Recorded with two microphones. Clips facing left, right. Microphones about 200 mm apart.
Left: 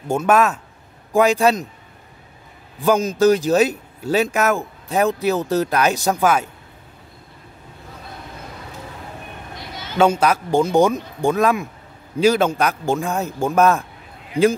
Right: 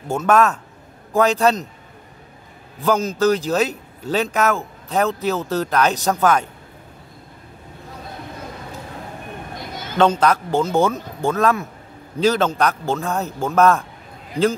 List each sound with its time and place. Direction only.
0.1 s speech: 10° left (ahead or behind)
2.8 s speech: 15° left (ahead or behind)
9.6 s a sound: 50° right (ahead or behind)
9.9 s a man's voice: 10° left (ahead or behind)